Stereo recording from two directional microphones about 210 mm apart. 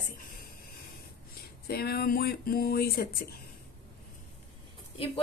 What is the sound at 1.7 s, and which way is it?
A woman's voice, 50° left (ahead or behind).